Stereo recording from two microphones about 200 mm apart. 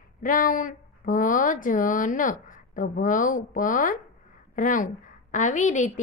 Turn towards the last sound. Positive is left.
turn(degrees=35)  # may be behind; listen again after turning